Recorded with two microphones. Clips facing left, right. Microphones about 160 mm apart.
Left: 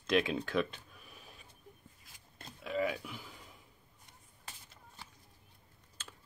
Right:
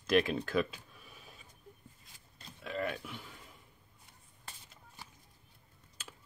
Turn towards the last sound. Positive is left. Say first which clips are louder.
# right 1 dB
turn(degrees=-10)  # may be behind; listen again after turning